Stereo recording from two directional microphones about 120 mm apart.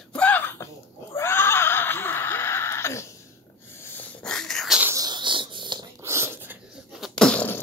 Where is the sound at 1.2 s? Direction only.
20° left (ahead or behind).